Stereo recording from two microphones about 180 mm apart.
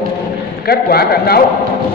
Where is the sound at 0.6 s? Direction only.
60° left (ahead or behind).